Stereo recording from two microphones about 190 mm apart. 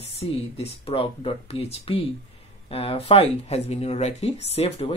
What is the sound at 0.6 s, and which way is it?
Speech, 30° left (ahead or behind).